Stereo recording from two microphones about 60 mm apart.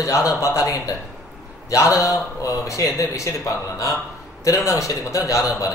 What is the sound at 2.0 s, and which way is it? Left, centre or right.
Speech, left.